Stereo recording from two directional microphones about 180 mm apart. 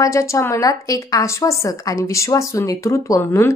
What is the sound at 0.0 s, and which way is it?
A woman's voice, 15° left (ahead or behind).